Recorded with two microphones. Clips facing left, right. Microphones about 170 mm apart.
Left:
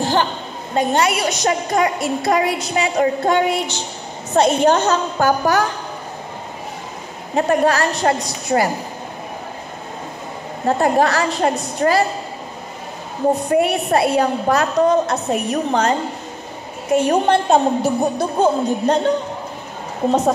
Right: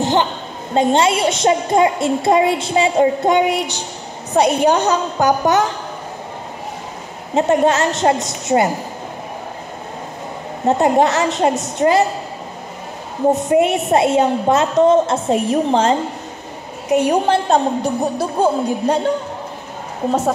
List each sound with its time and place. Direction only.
0.0 s a sound: 20° right (ahead or behind)
0.7 s a woman's voice: 25° right (ahead or behind)
7.3 s a woman's voice: 20° right (ahead or behind)
10.6 s a woman's voice: 20° right (ahead or behind)
13.3 s a woman's voice: 20° right (ahead or behind)
16.9 s a woman's voice: 15° right (ahead or behind)
17.3 s a woman's voice: centre (ahead or behind)